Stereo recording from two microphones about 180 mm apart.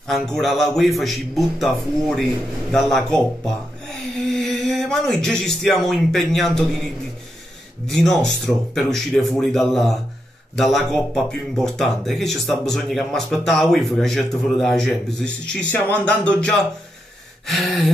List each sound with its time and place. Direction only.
0.1 s speech: centre (ahead or behind)
7.8 s speech: centre (ahead or behind)
15.7 s a sound: 10° left (ahead or behind)
17.5 s speech: centre (ahead or behind)